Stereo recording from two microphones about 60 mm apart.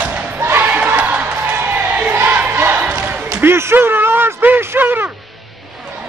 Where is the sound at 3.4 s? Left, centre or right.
Right.